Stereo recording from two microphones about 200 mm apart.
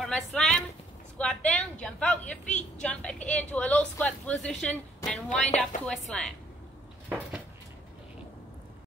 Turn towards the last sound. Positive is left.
turn(degrees=-10)  # may be behind; listen again after turning